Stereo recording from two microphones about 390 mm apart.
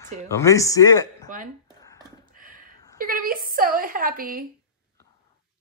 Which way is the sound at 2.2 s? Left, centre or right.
Right.